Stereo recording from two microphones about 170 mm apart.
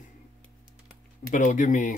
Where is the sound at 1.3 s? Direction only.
50° left (ahead or behind).